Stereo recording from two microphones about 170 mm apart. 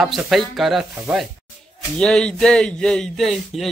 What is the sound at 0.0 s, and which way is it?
Speech, centre (ahead or behind).